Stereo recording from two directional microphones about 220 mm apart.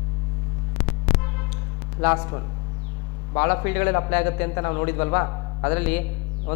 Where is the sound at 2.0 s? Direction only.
15° left (ahead or behind).